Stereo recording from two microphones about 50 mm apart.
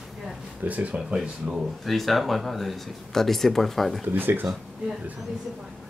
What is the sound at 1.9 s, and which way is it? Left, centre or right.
Speech, centre.